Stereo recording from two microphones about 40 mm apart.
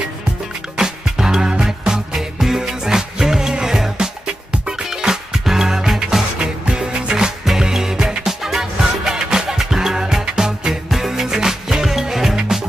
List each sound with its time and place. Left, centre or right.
0.7 s music: centre
2.1 s music: centre
7.4 s music: centre